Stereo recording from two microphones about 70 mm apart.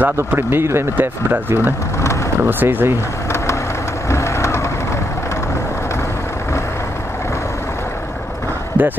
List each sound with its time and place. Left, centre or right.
0.0 s speech: right
4.1 s vehicle: left
8.8 s speech: right